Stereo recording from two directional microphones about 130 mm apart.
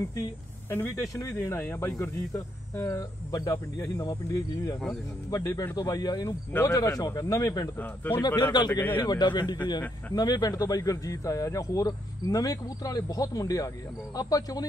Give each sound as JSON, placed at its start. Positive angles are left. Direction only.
{"t": 0.1, "sound": "a man's voice", "side_deg": 20}